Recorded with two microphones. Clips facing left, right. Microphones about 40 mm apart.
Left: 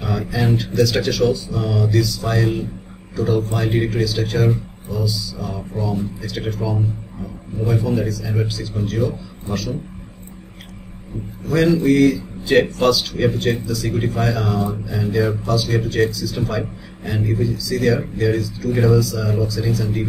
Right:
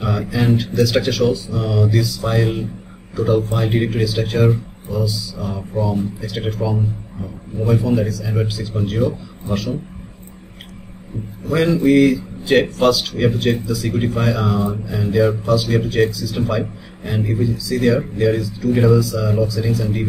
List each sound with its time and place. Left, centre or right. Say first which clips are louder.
0.0 s speech: right 2 dB; centre
7.6 s a man's voice: right 3 dB; centre
11.4 s speech: even; centre
12.5 s speech: right 1 dB; centre